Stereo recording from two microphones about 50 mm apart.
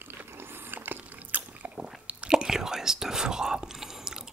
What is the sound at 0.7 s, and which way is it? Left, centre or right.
Biting, right.